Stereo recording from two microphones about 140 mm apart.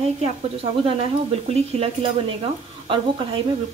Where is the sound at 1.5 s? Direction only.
45° right (ahead or behind).